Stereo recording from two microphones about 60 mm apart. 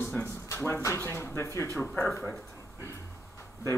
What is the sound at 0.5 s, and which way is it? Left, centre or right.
Speech, left.